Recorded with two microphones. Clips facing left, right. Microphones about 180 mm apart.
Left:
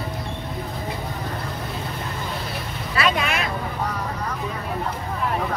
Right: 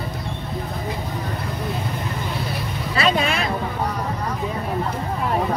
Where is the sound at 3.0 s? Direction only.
30° right (ahead or behind).